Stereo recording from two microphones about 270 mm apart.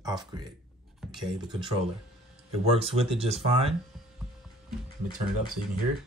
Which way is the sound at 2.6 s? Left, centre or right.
Right.